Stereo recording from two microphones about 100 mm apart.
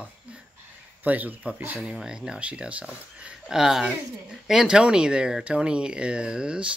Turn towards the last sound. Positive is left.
turn(degrees=-10)  # may be behind; listen again after turning